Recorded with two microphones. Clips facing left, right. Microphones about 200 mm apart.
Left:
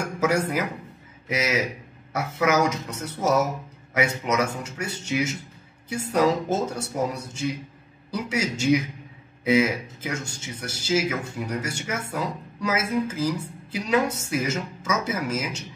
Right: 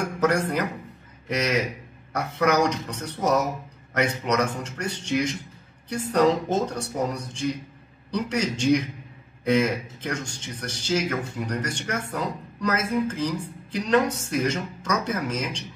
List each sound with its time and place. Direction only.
0.2 s speech: 5° left (ahead or behind)